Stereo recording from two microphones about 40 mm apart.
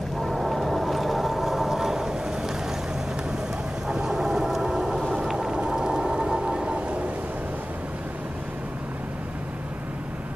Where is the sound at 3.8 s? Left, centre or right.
Centre; by 7.1 s right.